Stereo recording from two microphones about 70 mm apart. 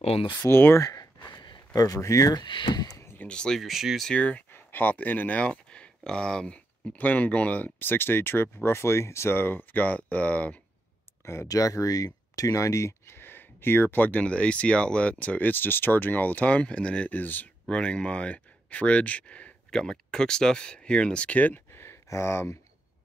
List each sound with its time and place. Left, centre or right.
0.4 s speech: left
0.7 s a sound: left
1.8 s speech: left
2.3 s speech: left
2.9 s a sound: left
3.2 s speech: centre
3.6 s speech: centre
4.2 s speech: centre
4.5 s speech: left
11.2 s speech: left
11.5 s speech: left; by 17.1 s centre
17.1 s speech: left
17.6 s speech: centre
21.7 s a sound: left